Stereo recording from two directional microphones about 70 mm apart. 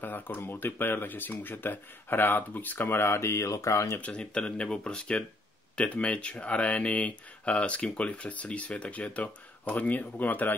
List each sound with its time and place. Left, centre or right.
0.0 s speech: left
4.0 s speech: centre